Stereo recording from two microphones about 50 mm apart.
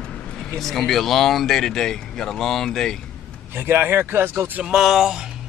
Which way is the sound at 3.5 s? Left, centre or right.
Right.